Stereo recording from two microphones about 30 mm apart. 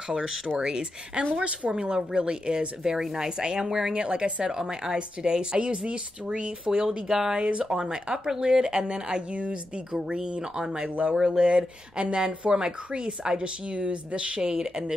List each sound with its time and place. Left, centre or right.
0.1 s speech: right
3.9 s speech: right
7.1 s speech: centre
7.3 s speech: right
7.8 s speech: centre